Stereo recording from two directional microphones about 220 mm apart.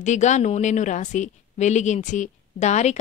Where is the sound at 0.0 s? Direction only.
35° left (ahead or behind).